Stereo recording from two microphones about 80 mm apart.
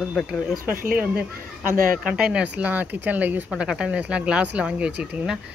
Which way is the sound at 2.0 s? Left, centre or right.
Centre.